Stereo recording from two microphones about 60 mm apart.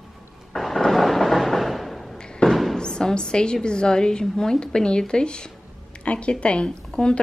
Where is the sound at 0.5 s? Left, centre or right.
Centre.